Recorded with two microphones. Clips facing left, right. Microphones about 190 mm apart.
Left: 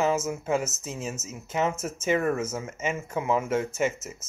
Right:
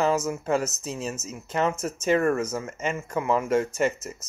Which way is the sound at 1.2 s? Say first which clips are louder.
Right 3 dB; 25° left (ahead or behind).